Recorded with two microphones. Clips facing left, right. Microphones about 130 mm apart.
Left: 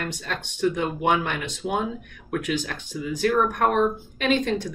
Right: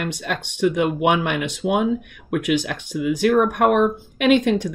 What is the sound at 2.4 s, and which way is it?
Speech, 75° right (ahead or behind).